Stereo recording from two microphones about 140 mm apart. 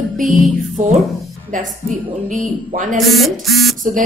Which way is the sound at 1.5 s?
70° right (ahead or behind).